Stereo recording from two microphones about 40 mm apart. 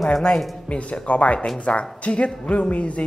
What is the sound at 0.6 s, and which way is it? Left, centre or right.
A man's voice, left.